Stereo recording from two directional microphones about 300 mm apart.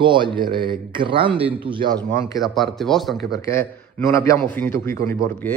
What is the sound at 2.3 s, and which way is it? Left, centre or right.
A man's voice, centre.